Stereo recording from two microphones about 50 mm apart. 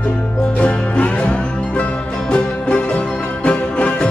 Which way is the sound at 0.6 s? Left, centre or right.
Left.